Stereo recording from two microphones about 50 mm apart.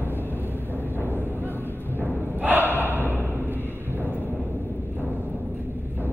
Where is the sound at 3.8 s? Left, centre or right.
Right.